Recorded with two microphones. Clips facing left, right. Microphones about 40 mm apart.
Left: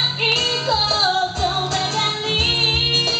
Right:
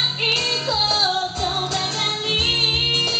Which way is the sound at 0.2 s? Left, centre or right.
Centre.